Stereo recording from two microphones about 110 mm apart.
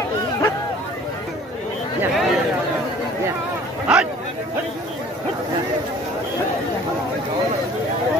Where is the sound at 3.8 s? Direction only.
10° right (ahead or behind).